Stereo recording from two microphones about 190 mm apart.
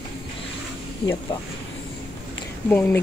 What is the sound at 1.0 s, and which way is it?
Speech, 20° left (ahead or behind).